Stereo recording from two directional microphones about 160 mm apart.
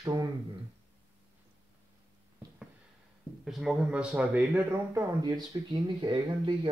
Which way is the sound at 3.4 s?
Centre (ahead or behind).